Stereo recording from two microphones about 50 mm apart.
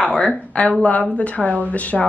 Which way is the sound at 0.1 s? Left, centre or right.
Left.